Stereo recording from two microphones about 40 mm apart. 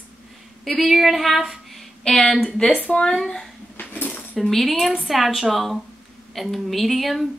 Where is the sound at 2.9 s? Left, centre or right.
Left.